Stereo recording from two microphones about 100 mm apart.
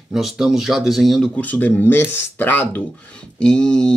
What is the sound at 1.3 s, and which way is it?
Speech, 15° left (ahead or behind).